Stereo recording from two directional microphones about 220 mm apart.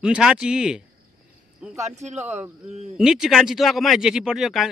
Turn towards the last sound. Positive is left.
turn(degrees=0)  # may be behind; listen again after turning